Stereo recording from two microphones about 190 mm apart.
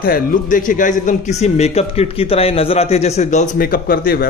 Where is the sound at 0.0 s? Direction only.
50° left (ahead or behind).